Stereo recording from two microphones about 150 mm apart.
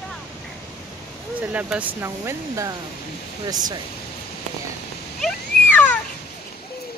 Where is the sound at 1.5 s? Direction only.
10° right (ahead or behind); by 3.7 s 25° right (ahead or behind).